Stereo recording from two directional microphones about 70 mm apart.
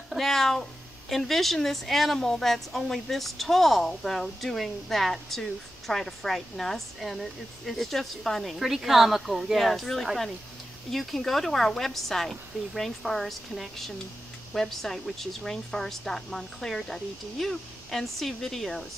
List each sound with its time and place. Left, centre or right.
0.1 s speech: centre